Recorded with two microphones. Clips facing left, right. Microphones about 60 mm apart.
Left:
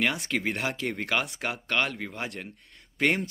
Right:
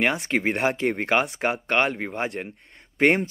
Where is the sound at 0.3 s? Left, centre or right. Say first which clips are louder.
Right 6 dB; right.